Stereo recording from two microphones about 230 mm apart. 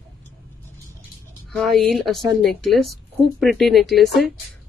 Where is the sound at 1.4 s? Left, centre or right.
Centre.